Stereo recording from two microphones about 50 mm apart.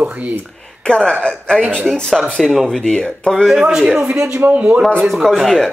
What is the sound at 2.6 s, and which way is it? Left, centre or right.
Speech, centre.